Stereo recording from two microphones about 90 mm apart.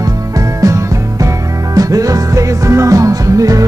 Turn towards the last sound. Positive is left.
turn(degrees=-40)  # may be behind; listen again after turning